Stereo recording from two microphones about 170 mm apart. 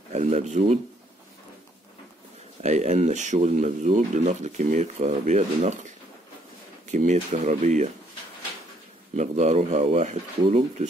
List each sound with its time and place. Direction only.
0.1 s speech: 40° right (ahead or behind)
2.6 s speech: 40° right (ahead or behind)
9.1 s speech: 40° right (ahead or behind)